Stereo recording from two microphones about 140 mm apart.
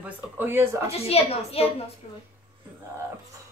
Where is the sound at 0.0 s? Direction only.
15° right (ahead or behind).